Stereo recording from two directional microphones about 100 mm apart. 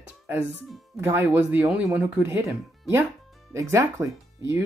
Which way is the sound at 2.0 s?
10° right (ahead or behind).